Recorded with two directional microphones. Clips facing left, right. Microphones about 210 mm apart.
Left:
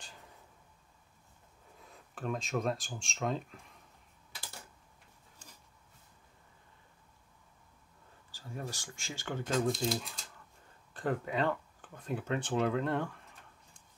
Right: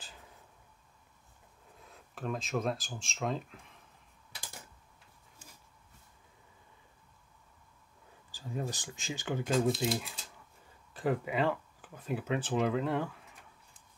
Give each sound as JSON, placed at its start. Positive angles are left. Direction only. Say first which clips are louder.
{"t": 0.0, "sound": "a sound", "louder": "even", "side_deg": 0}
{"t": 1.8, "sound": "speech", "louder": "even", "side_deg": 0}
{"t": 8.3, "sound": "speech", "louder": "right 5 dB", "side_deg": -15}
{"t": 9.6, "sound": "speech", "louder": "right 1 dB", "side_deg": -5}